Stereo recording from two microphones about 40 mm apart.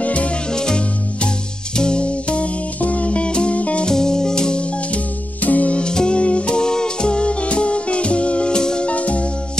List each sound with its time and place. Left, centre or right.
0.0 s music: left
0.5 s music: centre
3.8 s music: centre
5.4 s music: left
5.8 s music: left
8.9 s music: left